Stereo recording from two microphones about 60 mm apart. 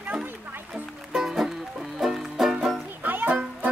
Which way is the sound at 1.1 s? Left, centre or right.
Centre.